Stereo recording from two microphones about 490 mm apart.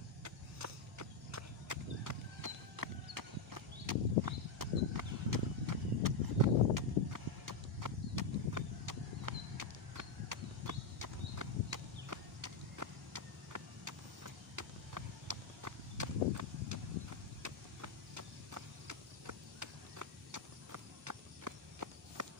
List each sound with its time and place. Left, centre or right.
0.2 s horse: right